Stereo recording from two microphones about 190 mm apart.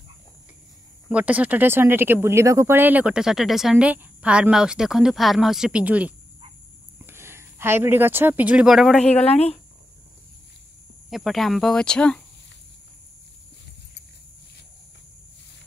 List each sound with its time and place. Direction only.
1.0 s speech: 5° right (ahead or behind)
9.3 s speech: 30° left (ahead or behind)
11.1 s speech: centre (ahead or behind)